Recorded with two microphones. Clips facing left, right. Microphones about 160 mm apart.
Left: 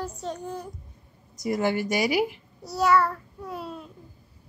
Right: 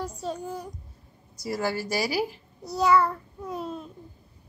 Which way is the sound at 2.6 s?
20° right (ahead or behind).